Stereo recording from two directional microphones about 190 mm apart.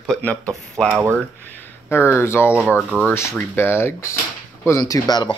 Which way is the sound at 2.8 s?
5° right (ahead or behind).